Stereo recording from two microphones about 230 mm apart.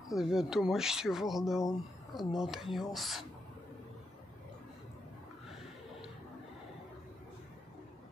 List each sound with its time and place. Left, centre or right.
0.1 s speech: centre